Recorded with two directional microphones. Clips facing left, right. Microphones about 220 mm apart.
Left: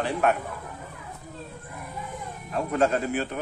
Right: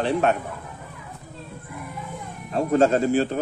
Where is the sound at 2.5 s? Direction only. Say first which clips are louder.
Right 5 dB; 30° right (ahead or behind).